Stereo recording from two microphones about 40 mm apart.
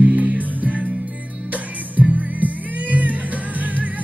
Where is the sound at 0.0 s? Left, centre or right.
Right.